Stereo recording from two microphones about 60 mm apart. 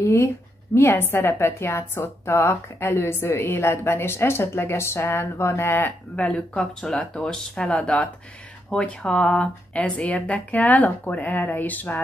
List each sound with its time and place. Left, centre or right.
0.0 s a woman's voice: left
0.9 s a woman's voice: left
6.1 s speech: left
6.8 s speech: centre; by 12.0 s left